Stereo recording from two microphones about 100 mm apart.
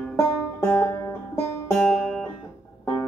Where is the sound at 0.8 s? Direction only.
25° left (ahead or behind).